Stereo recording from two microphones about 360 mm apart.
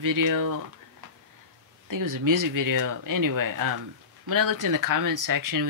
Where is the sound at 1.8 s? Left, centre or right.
Right.